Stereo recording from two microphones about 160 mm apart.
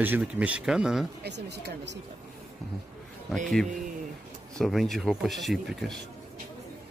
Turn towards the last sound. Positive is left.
turn(degrees=0)  # may be behind; listen again after turning